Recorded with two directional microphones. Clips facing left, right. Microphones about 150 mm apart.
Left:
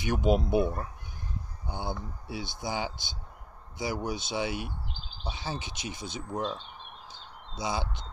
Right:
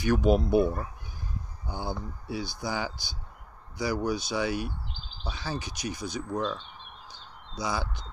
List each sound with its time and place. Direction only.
0.0 s speech: 20° left (ahead or behind)
1.7 s speech: 20° left (ahead or behind)
7.1 s a sound: 25° left (ahead or behind)